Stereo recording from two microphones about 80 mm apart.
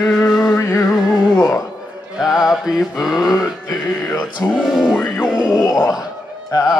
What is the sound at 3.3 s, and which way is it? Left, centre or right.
Mantra, left.